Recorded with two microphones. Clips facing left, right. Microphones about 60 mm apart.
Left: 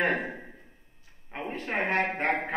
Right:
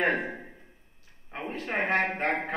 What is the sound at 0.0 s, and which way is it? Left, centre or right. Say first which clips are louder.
A man's voice: right 1 dB; centre.